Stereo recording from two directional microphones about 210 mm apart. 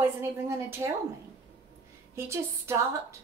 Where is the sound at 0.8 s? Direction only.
15° right (ahead or behind).